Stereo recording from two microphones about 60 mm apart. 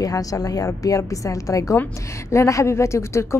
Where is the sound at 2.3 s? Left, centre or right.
Left.